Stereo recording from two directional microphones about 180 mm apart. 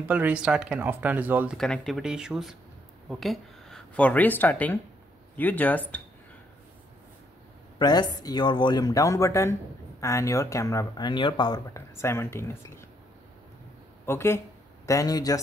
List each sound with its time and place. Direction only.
0.1 s speech: 10° right (ahead or behind)
1.6 s speech: centre (ahead or behind)
7.8 s speech: 20° left (ahead or behind)
14.0 s speech: 15° left (ahead or behind)